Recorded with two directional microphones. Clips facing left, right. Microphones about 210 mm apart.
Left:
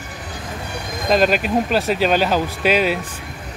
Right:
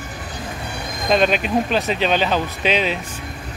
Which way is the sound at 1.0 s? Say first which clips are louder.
Left 1 dB; 5° left (ahead or behind).